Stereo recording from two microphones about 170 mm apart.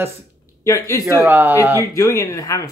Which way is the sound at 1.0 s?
10° right (ahead or behind).